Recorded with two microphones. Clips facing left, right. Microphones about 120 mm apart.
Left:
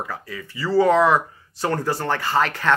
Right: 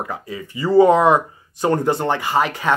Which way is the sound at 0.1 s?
20° right (ahead or behind).